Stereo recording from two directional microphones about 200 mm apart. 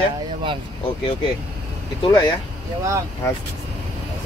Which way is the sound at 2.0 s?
20° left (ahead or behind).